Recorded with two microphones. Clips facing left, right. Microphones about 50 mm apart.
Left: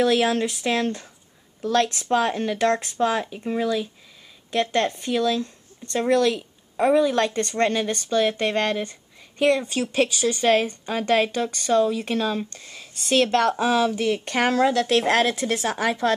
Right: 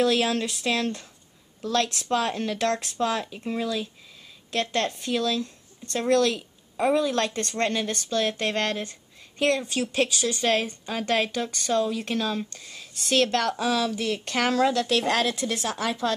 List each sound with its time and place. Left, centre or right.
0.0 s a woman's voice: left